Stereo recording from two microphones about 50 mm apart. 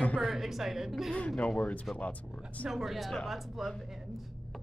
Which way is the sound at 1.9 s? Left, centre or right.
Left.